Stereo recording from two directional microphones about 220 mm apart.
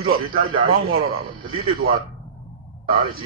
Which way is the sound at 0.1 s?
45° right (ahead or behind).